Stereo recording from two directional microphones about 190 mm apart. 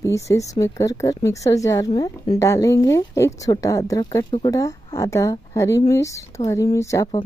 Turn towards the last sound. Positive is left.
turn(degrees=15)  # may be behind; listen again after turning